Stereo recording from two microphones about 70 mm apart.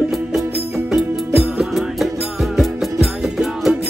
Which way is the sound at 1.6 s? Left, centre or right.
Centre.